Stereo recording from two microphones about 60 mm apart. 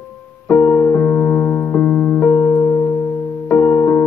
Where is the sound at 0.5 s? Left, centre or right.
Left.